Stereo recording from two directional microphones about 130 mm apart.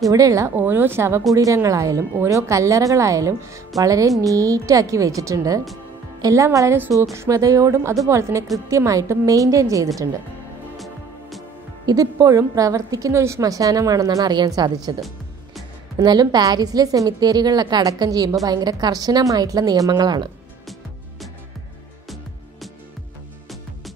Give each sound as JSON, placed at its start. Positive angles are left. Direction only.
{"t": 0.1, "sound": "a woman's voice", "side_deg": -25}
{"t": 10.8, "sound": "music", "side_deg": 0}
{"t": 11.8, "sound": "a woman's voice", "side_deg": -30}
{"t": 15.0, "sound": "music", "side_deg": 0}
{"t": 16.0, "sound": "a woman's voice", "side_deg": -35}